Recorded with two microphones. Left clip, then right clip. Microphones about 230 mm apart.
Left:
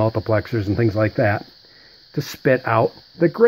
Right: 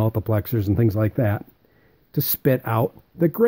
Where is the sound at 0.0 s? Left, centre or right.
Right.